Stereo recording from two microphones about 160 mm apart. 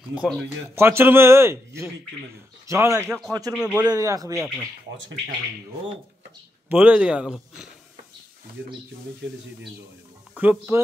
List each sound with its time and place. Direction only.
0.1 s speech: 5° right (ahead or behind); by 3.5 s 20° right (ahead or behind)
3.5 s a man's voice: 5° right (ahead or behind)
3.9 s speech: 20° right (ahead or behind)
6.7 s speech: 10° right (ahead or behind)
10.3 s speech: 10° right (ahead or behind)